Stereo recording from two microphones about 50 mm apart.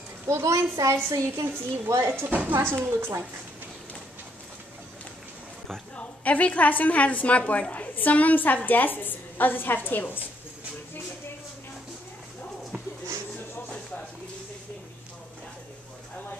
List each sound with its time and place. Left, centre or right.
0.3 s a child's voice: right
1.3 s a woman's voice: right
5.9 s a woman's voice: left